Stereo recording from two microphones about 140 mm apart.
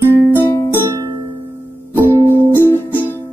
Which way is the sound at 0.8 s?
20° right (ahead or behind).